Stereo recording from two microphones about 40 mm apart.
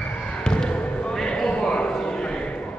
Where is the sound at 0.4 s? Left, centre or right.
Left.